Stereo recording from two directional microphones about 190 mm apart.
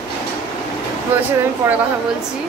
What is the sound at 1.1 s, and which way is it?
Speech, 10° right (ahead or behind).